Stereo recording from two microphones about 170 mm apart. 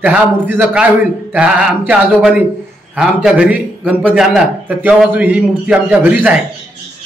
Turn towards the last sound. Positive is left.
turn(degrees=-10)  # may be behind; listen again after turning